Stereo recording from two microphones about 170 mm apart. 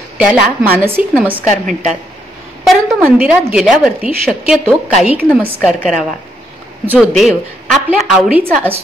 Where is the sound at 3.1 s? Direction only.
10° right (ahead or behind).